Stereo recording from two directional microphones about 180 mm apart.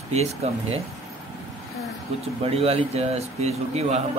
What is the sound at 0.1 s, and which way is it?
Speech, 35° right (ahead or behind).